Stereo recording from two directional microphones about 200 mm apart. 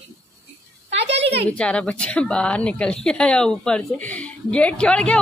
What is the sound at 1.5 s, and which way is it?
A woman's voice, 5° left (ahead or behind).